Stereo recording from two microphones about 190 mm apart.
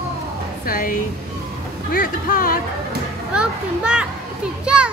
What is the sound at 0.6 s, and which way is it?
A woman's voice, 50° left (ahead or behind).